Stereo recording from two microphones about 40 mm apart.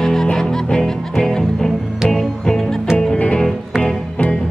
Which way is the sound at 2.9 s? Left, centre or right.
Left.